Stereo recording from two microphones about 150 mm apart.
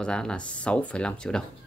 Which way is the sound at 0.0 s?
5° left (ahead or behind).